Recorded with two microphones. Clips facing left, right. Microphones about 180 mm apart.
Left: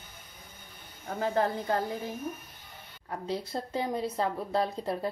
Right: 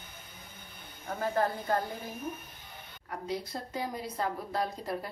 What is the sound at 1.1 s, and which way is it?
Speech, 20° left (ahead or behind).